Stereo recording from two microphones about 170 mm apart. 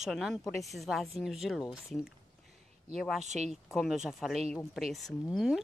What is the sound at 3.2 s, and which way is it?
Speech, 45° right (ahead or behind).